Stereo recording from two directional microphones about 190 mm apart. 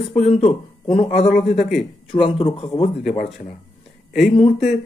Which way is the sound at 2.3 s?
25° left (ahead or behind).